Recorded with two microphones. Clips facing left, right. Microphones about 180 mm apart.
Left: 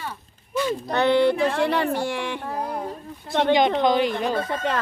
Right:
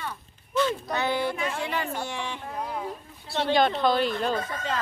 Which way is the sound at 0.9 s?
65° left (ahead or behind).